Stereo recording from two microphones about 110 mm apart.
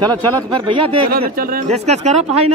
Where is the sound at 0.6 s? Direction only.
50° right (ahead or behind); by 2.2 s 85° right.